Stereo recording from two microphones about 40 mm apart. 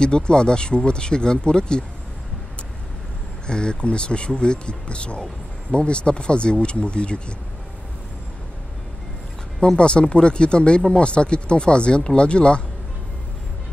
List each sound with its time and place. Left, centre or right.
0.0 s speech: left
3.4 s speech: left
9.8 s speech: left